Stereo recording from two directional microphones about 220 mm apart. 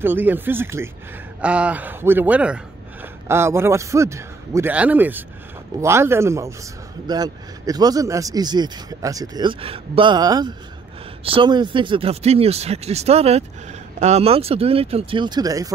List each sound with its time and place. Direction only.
0.0 s a man's voice: 10° right (ahead or behind)